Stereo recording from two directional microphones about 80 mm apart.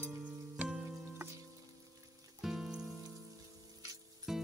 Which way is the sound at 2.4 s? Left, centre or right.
Centre.